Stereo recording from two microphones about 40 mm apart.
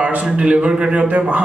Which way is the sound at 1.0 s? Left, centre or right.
Right.